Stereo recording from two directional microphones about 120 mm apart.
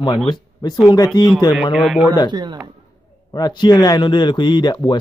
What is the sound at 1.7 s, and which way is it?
Speech, 5° right (ahead or behind).